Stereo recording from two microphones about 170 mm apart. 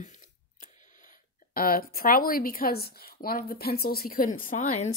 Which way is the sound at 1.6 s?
60° left (ahead or behind).